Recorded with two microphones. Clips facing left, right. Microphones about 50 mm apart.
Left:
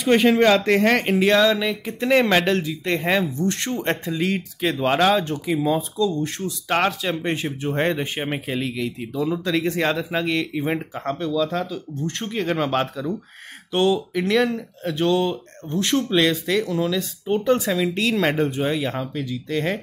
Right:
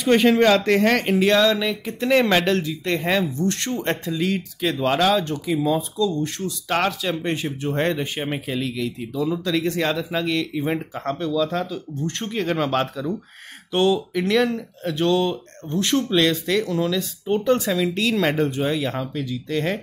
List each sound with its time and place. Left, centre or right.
0.0 s speech: centre
7.6 s speech: centre
10.6 s speech: centre